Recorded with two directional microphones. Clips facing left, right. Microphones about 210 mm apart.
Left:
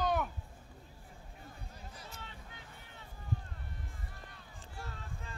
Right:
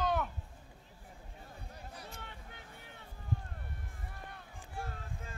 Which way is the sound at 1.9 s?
60° right (ahead or behind).